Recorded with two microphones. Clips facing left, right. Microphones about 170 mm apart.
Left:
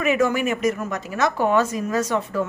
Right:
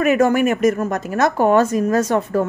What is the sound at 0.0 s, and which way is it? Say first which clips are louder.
Speech: right 5 dB; 50° right (ahead or behind).